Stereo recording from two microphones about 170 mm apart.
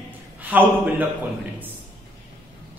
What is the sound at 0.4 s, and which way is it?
Speech, 10° right (ahead or behind).